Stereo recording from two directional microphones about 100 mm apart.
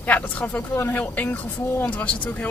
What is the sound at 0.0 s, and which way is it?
Speech, 15° left (ahead or behind).